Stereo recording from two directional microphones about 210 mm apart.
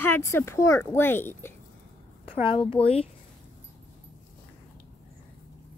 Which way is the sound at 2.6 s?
25° left (ahead or behind).